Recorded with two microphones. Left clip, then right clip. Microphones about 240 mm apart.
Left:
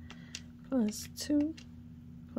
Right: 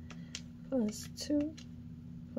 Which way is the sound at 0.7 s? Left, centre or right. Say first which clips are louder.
Left 1 dB; left.